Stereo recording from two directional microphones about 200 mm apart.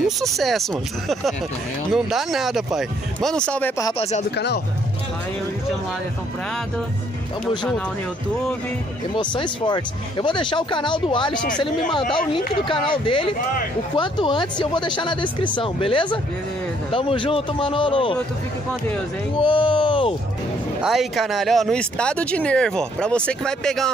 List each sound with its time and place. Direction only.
0.0 s speech: centre (ahead or behind)
9.1 s speech: 25° left (ahead or behind)
12.6 s speech: 25° left (ahead or behind)
19.4 s speech: 25° left (ahead or behind)
20.8 s speech: centre (ahead or behind)